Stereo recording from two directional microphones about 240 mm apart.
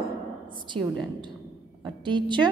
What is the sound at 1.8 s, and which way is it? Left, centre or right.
Speech, centre.